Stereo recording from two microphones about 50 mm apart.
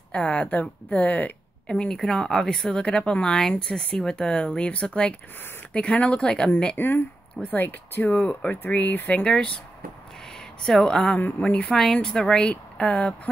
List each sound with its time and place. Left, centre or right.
0.1 s speech: left
1.7 s speech: centre
2.8 s speech: left
6.8 s speech: left
9.2 s speech: centre
10.6 s speech: centre
11.1 s speech: left
11.7 s speech: centre
12.4 s speech: left